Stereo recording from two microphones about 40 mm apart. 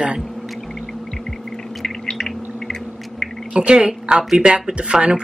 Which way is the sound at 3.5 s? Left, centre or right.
Right.